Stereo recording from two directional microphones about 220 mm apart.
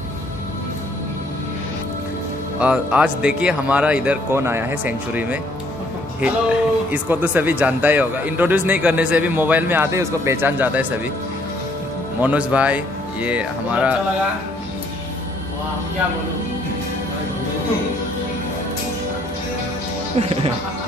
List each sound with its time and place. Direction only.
2.6 s a man's voice: 5° right (ahead or behind)
12.2 s a man's voice: 5° right (ahead or behind)
20.2 s speech: 25° right (ahead or behind)